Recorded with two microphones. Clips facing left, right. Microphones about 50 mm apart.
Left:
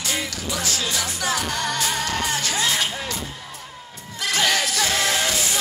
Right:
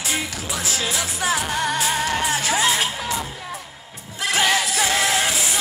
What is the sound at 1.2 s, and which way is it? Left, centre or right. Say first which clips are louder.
Music: right 4 dB; centre.